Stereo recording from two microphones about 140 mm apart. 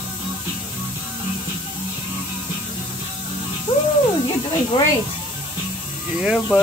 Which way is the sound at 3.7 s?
35° left (ahead or behind).